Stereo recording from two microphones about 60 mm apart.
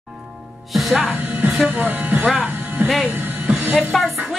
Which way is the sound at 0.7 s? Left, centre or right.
Centre.